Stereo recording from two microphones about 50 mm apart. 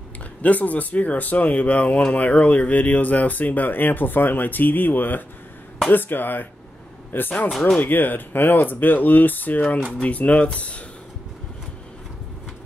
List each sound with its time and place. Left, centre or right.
0.4 s speech: left